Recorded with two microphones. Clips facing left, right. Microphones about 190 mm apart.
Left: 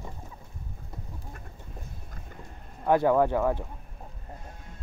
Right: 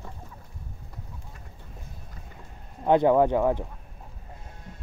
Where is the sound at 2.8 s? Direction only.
20° right (ahead or behind).